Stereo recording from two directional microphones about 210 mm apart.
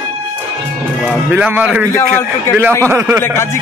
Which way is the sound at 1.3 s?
10° right (ahead or behind).